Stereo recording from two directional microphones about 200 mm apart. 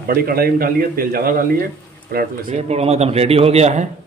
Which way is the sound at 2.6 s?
30° right (ahead or behind).